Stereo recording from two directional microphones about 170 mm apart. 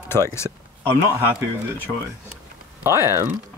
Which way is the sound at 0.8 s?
10° right (ahead or behind).